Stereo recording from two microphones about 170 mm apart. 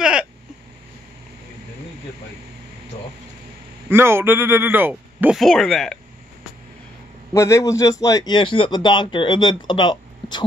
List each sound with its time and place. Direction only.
0.0 s a sound: 5° right (ahead or behind)
3.9 s a man's voice: 15° right (ahead or behind)
5.4 s speech: centre (ahead or behind)
7.3 s speech: 15° left (ahead or behind)